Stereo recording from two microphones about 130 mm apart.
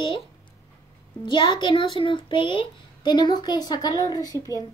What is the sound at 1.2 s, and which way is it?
A child's voice, 35° left (ahead or behind).